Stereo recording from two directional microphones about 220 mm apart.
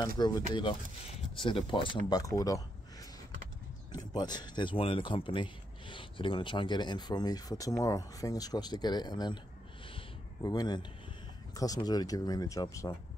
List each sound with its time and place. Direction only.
0.2 s speech: 20° left (ahead or behind)
3.9 s speech: 20° left (ahead or behind)
9.9 s a sound: 15° left (ahead or behind)
11.5 s speech: 15° left (ahead or behind)